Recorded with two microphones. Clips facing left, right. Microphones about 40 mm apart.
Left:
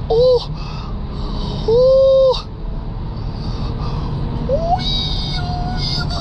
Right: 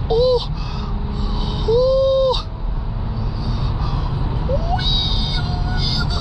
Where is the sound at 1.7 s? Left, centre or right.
Centre.